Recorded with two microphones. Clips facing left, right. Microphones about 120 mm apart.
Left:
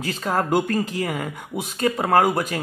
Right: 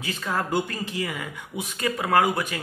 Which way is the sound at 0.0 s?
40° left (ahead or behind).